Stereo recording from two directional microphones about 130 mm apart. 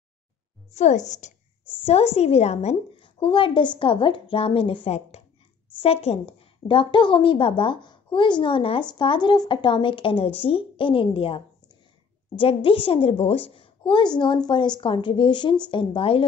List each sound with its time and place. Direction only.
0.7 s a woman's voice: 65° left (ahead or behind)
1.8 s a woman's voice: 50° left (ahead or behind)
3.0 s a woman's voice: 40° left (ahead or behind)